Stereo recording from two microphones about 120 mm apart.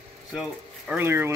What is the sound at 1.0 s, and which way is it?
Speech, 20° right (ahead or behind).